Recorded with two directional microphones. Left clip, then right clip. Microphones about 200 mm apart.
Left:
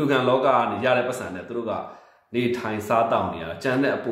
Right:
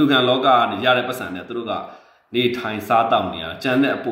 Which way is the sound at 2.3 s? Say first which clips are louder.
Right 4 dB; 10° left (ahead or behind).